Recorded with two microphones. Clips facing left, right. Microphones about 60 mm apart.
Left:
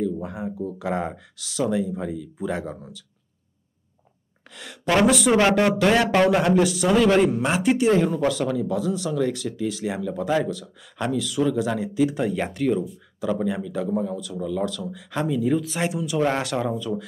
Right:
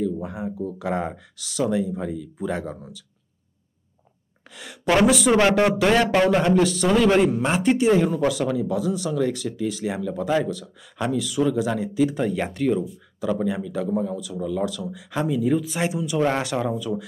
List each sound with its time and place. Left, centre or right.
0.0 s speech: centre
4.6 s speech: centre